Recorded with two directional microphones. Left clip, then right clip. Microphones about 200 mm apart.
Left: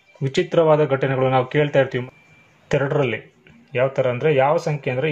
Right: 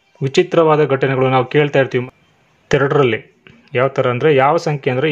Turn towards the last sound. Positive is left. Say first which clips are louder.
# right 5 dB
turn(degrees=-45)  # may be behind; listen again after turning